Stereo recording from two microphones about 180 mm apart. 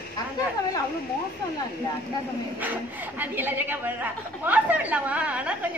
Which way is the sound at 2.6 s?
10° right (ahead or behind).